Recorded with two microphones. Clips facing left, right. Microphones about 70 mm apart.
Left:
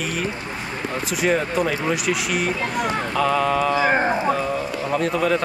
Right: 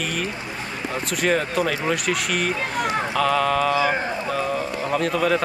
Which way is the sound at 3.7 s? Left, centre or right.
Left.